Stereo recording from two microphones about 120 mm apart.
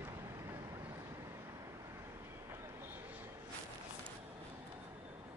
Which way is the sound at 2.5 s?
20° right (ahead or behind).